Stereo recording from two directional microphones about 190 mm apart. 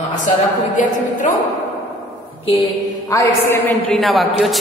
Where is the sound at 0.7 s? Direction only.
40° left (ahead or behind).